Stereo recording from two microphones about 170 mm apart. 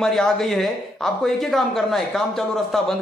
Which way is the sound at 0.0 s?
Centre (ahead or behind).